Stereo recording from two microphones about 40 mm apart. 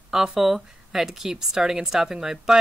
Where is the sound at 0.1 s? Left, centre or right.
Centre.